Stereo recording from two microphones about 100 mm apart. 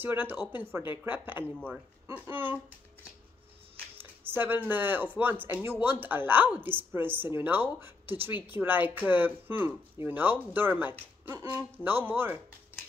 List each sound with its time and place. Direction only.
0.0 s speech: 20° right (ahead or behind)
4.0 s speech: 20° right (ahead or behind)